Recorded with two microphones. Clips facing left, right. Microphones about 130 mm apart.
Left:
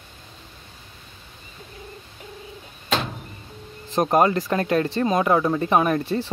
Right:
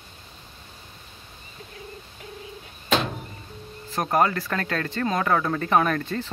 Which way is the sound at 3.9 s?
20° left (ahead or behind).